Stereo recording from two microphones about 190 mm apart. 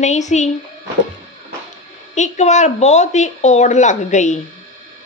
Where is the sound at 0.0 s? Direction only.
40° left (ahead or behind).